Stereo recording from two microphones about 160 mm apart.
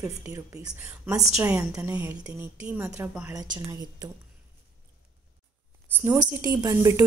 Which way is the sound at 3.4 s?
25° right (ahead or behind).